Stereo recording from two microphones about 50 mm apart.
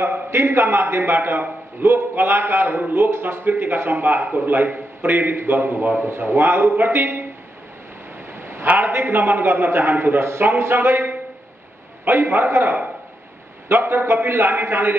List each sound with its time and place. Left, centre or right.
0.0 s a man's voice: right
8.4 s a sound: right
8.6 s a man's voice: right